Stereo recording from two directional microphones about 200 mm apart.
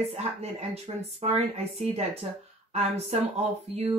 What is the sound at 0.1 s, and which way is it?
Speech, 35° right (ahead or behind).